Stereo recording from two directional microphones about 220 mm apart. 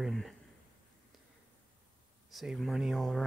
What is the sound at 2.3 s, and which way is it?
Speech, centre (ahead or behind).